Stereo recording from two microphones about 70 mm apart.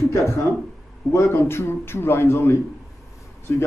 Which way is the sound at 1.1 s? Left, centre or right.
Left.